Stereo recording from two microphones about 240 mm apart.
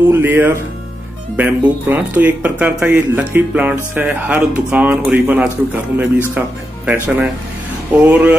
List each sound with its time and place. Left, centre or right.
0.1 s speech: centre